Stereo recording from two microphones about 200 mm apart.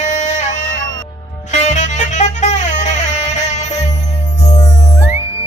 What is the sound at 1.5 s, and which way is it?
Music, 35° left (ahead or behind).